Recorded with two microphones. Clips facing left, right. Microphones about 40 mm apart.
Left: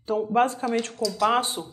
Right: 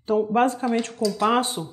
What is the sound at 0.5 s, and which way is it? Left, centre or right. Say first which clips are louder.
Speech: right 2 dB; centre.